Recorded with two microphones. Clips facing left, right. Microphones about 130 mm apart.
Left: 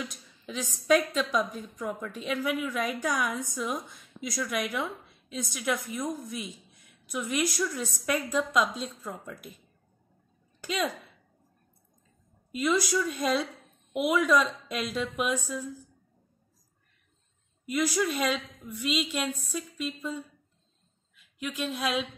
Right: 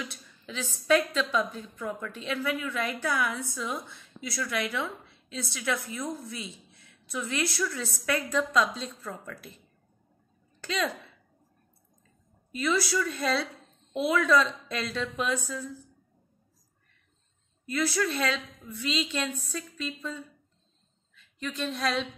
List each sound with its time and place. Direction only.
0.1 s a woman's voice: 15° left (ahead or behind)
10.6 s speech: 10° left (ahead or behind)
12.5 s a woman's voice: 15° left (ahead or behind)
17.6 s a woman's voice: 15° left (ahead or behind)